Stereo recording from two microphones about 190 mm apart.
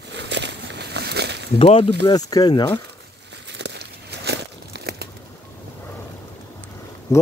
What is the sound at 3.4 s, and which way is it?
Crumpling, 65° right (ahead or behind).